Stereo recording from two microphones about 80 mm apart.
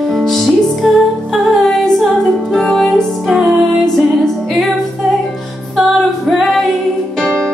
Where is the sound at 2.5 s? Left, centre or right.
Centre.